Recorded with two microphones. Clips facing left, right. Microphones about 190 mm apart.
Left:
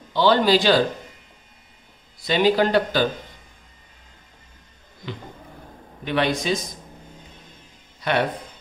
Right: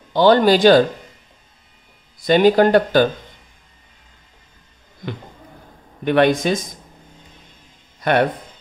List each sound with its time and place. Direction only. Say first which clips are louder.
0.1 s speech: right 5 dB; 50° right (ahead or behind)
2.1 s speech: right 6 dB; 50° right (ahead or behind)
6.0 s speech: right 7 dB; 55° right (ahead or behind)
8.0 s speech: right 5 dB; 50° right (ahead or behind)